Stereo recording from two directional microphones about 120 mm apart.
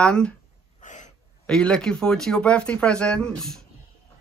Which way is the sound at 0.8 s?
90° left.